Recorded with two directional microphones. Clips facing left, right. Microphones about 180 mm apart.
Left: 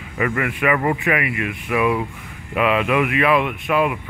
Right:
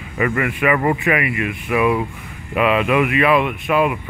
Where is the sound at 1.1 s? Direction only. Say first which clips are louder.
Right 2 dB; 10° right (ahead or behind).